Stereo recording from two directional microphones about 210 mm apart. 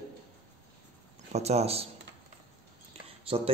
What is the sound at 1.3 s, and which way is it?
Speech, 30° right (ahead or behind).